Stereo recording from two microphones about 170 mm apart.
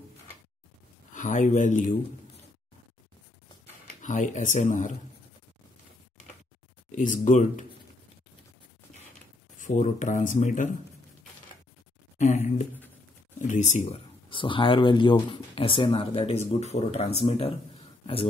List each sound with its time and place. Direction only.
1.1 s a man's voice: 50° left (ahead or behind)
4.0 s speech: 50° left (ahead or behind)
6.9 s speech: 50° left (ahead or behind)
9.6 s speech: 50° left (ahead or behind)
12.2 s speech: 45° left (ahead or behind)